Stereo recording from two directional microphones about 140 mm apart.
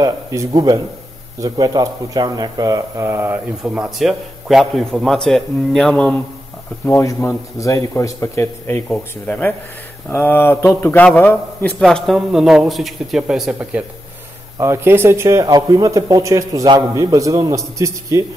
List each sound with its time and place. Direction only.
0.0 s a man's voice: 25° right (ahead or behind)
3.6 s a man's voice: 5° right (ahead or behind)
6.9 s speech: 20° left (ahead or behind)
11.8 s a man's voice: centre (ahead or behind); by 18.2 s 20° right (ahead or behind)